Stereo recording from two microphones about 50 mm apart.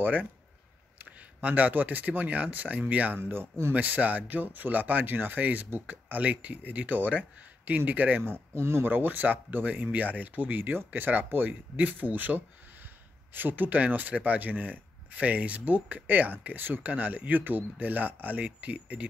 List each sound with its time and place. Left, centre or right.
0.0 s speech: right
3.2 s speech: right
3.7 s speech: right
8.2 s speech: right
8.8 s speech: right